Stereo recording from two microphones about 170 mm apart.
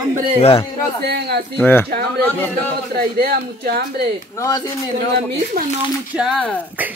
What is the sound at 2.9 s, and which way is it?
A woman's voice, 65° right (ahead or behind).